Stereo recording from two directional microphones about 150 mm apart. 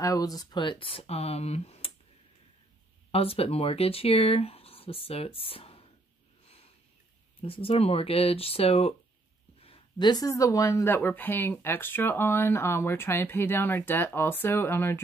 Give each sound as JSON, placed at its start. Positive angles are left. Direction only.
{"t": 0.0, "sound": "speech", "side_deg": 25}
{"t": 3.1, "sound": "speech", "side_deg": 40}
{"t": 7.4, "sound": "speech", "side_deg": 40}